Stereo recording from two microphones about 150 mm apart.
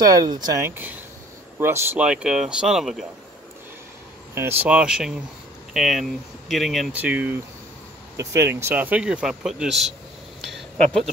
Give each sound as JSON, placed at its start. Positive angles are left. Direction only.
{"t": 0.0, "sound": "speech", "side_deg": -25}
{"t": 2.0, "sound": "speech", "side_deg": -5}
{"t": 4.4, "sound": "speech", "side_deg": -15}
{"t": 7.0, "sound": "speech", "side_deg": -10}
{"t": 10.4, "sound": "a sound", "side_deg": 0}